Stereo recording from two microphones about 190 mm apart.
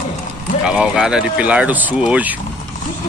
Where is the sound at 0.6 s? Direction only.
5° right (ahead or behind).